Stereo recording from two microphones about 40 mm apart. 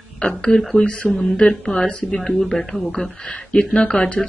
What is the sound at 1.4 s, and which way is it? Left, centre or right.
Speech, left.